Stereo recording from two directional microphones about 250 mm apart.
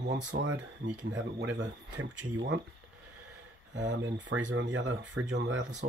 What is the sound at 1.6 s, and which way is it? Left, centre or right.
Speech, right.